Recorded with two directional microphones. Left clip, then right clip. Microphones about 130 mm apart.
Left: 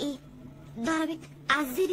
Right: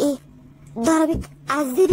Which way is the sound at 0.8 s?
30° right (ahead or behind).